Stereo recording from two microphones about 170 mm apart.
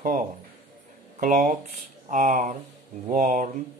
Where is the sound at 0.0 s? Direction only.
50° right (ahead or behind).